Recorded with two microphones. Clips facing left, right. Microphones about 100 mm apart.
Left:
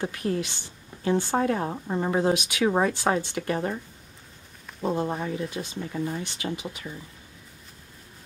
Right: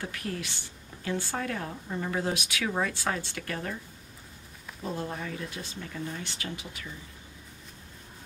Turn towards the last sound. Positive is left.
turn(degrees=20)  # may be behind; listen again after turning